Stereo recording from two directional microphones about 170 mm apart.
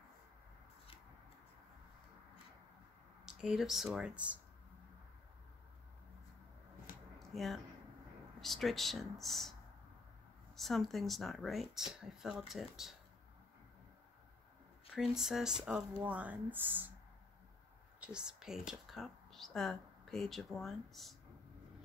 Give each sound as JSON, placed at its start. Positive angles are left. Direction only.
{"t": 3.3, "sound": "speech", "side_deg": 0}
{"t": 7.2, "sound": "a sound", "side_deg": 0}
{"t": 8.4, "sound": "speech", "side_deg": 0}
{"t": 14.9, "sound": "speech", "side_deg": -5}
{"t": 18.0, "sound": "speech", "side_deg": -5}